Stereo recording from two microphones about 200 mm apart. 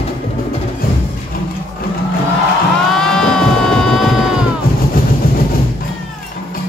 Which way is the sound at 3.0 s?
5° left (ahead or behind).